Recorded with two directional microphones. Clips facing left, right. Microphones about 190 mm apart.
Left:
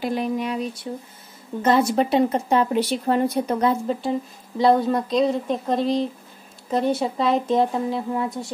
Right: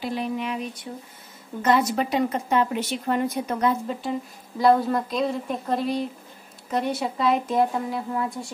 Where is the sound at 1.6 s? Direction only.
30° left (ahead or behind).